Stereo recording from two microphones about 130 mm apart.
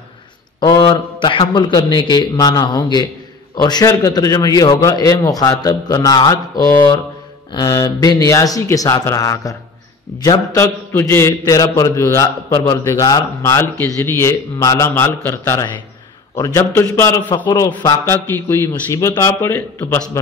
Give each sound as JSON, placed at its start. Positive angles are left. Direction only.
{"t": 0.6, "sound": "mantra", "side_deg": 40}
{"t": 1.4, "sound": "a man's voice", "side_deg": 35}
{"t": 17.5, "sound": "a man's voice", "side_deg": 35}
{"t": 18.0, "sound": "a man's voice", "side_deg": 20}